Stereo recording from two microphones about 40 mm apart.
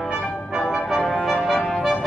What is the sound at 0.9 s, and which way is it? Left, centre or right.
Brass instrument, centre.